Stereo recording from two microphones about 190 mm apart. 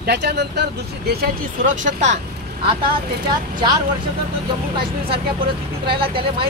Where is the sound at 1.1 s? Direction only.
50° right (ahead or behind).